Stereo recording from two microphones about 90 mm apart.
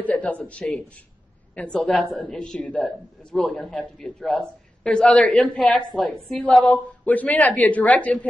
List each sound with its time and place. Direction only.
0.0 s speech: 15° left (ahead or behind)